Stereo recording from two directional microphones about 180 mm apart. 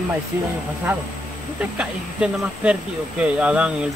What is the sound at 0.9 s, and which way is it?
Speech, 10° right (ahead or behind).